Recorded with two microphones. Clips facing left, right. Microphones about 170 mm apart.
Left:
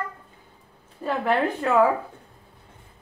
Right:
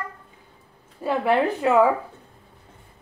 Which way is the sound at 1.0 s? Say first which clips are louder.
Right 2 dB; 10° right (ahead or behind).